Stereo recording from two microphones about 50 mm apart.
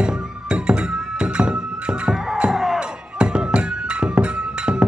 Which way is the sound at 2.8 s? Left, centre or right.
Centre.